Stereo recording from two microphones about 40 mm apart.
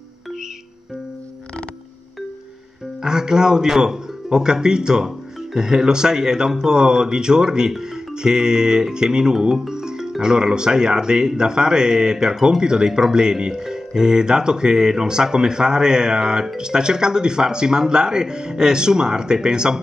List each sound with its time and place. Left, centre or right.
3.0 s speech: centre